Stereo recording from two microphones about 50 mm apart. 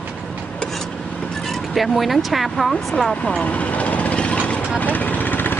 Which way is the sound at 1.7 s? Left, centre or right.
Centre.